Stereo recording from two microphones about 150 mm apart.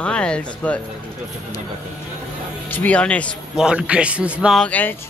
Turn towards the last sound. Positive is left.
turn(degrees=10)  # may be behind; listen again after turning